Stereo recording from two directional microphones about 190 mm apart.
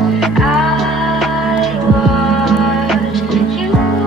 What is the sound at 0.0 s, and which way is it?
Music, centre (ahead or behind).